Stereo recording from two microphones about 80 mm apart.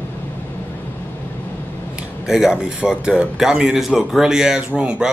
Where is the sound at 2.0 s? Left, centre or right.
Centre.